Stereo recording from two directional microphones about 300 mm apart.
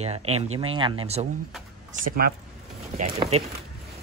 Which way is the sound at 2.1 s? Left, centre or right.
Right.